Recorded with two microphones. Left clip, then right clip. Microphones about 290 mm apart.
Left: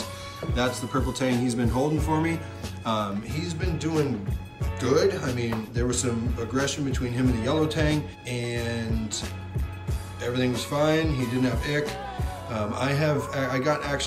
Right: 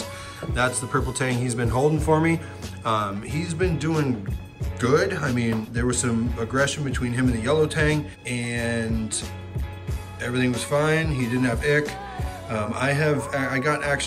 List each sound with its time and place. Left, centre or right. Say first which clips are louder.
0.4 s speech: right 3 dB; centre
10.2 s a man's voice: right 2 dB; centre